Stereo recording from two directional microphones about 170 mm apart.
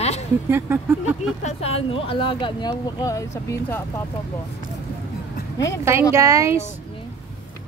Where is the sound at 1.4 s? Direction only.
35° left (ahead or behind); by 4.0 s 15° left (ahead or behind).